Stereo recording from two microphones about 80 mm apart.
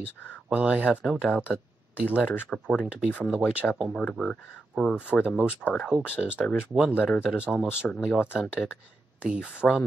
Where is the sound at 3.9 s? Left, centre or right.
Centre.